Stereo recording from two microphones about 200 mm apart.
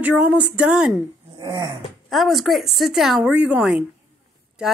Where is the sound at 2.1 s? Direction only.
Centre (ahead or behind).